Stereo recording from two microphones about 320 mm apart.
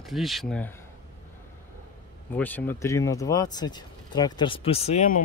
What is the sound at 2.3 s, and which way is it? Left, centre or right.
Speech, centre.